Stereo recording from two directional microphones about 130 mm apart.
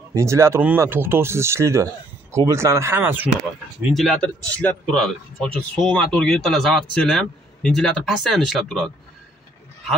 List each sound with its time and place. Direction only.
0.1 s speech: 25° right (ahead or behind)
3.9 s speech: centre (ahead or behind)